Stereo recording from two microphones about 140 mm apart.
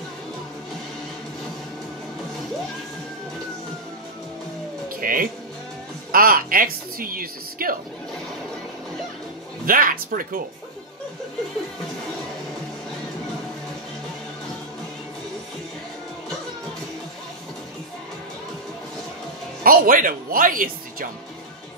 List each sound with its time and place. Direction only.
5.0 s music: 90° right
6.1 s a woman's voice: 90° right
9.7 s speech: 90° right
19.6 s speech: 90° right